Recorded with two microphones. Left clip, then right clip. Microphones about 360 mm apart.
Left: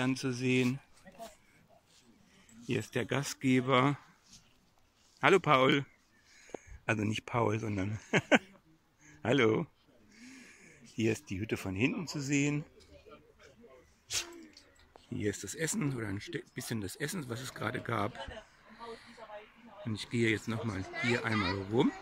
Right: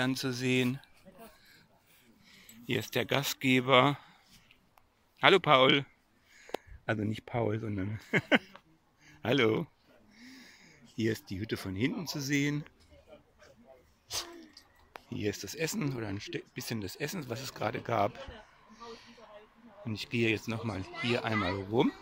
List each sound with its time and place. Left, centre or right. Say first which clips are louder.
0.0 s speech: right 1 dB; centre
2.7 s speech: right 3 dB; centre
5.2 s speech: right 3 dB; centre
6.9 s speech: left 1 dB; centre
14.1 s speech: left 1 dB; centre
15.1 s speech: right 1 dB; centre
19.9 s speech: right 1 dB; centre